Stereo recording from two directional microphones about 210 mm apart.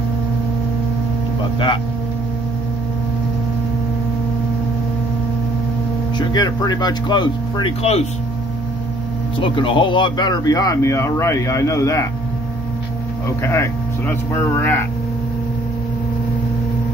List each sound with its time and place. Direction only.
6.1 s speech: 20° left (ahead or behind)
9.4 s speech: 25° left (ahead or behind)
13.4 s speech: 10° left (ahead or behind)